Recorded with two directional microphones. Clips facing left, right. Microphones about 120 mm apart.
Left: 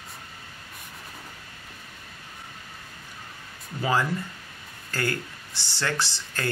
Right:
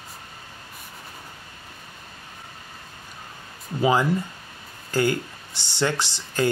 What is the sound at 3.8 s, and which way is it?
Speech, 20° right (ahead or behind).